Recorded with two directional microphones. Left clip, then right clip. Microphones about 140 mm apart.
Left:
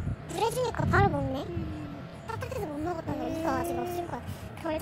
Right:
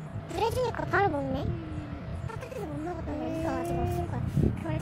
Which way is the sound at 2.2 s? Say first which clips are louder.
Left 4 dB; 35° left (ahead or behind).